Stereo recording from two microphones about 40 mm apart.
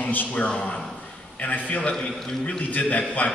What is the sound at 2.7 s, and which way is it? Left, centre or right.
Speech, left.